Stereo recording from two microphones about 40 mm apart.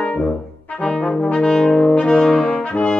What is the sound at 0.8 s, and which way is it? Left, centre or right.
Brass instrument, centre.